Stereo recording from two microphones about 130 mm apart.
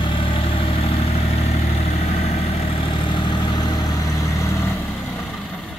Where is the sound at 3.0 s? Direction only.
35° left (ahead or behind).